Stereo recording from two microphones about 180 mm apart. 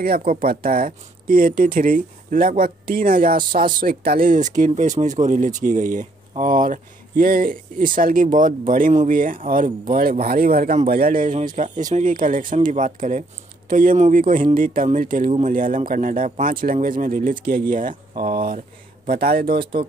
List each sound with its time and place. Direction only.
0.0 s speech: 55° right (ahead or behind)
19.6 s speech: 30° right (ahead or behind)